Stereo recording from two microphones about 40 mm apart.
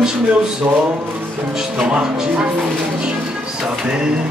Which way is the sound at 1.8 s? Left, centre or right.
Right.